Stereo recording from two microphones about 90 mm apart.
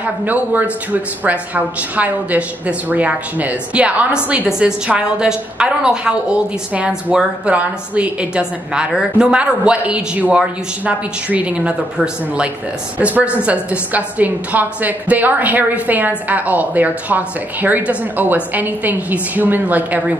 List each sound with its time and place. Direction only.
0.0 s speech: 20° right (ahead or behind)